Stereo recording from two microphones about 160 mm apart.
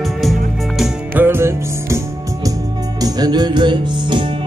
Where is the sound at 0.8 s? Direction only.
10° right (ahead or behind).